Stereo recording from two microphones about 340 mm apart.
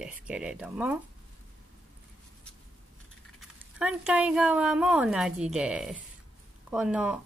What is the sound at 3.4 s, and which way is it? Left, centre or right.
Speech, centre.